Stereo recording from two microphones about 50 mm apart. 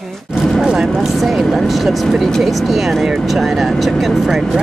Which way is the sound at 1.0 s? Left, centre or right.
Centre.